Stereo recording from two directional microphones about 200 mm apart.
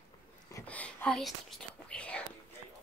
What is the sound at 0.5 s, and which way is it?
Whispering, 5° left (ahead or behind).